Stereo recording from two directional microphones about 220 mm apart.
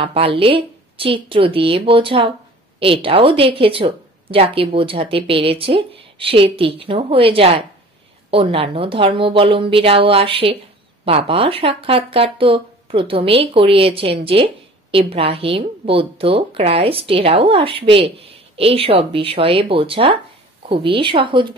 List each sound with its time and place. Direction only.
0.0 s speech: 25° right (ahead or behind)